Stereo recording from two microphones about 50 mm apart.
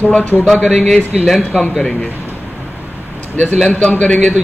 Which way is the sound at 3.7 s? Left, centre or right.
Left.